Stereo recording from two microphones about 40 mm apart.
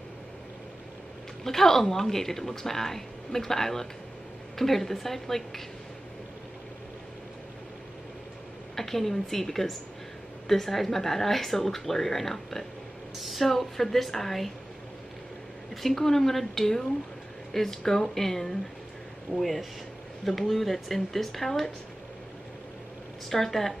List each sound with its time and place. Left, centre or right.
1.4 s speech: centre
8.7 s speech: centre
15.7 s speech: centre
23.3 s speech: centre